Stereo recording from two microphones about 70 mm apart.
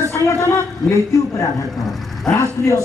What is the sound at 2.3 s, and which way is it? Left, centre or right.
Speech, left.